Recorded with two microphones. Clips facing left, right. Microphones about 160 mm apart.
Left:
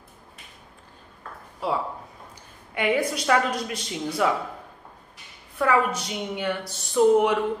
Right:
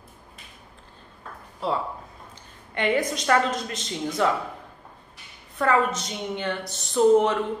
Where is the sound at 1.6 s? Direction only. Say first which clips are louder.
Even; 10° left (ahead or behind).